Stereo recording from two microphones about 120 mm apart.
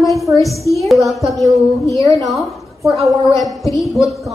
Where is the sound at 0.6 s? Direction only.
25° left (ahead or behind).